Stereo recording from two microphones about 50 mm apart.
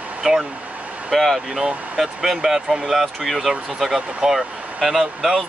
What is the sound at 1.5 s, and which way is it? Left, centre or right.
Speech, centre.